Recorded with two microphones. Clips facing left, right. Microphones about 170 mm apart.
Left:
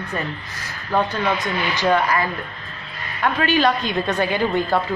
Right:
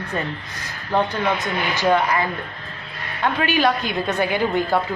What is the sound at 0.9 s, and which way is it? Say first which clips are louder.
A woman's voice: even; 15° right (ahead or behind).